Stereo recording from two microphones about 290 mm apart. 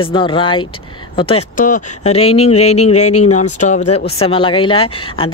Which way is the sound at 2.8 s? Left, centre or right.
Left.